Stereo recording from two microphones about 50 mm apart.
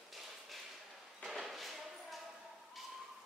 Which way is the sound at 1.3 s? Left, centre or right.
Centre.